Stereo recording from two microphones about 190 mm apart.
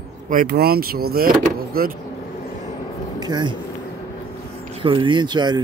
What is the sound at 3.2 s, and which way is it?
Speech, 20° right (ahead or behind).